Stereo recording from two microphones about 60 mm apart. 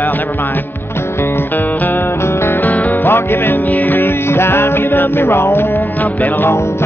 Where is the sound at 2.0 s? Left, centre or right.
Left.